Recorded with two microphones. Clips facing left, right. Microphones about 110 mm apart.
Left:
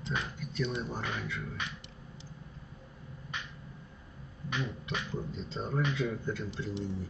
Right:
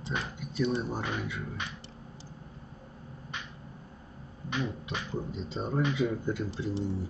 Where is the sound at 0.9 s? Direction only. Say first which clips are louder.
Right 3 dB; 15° right (ahead or behind).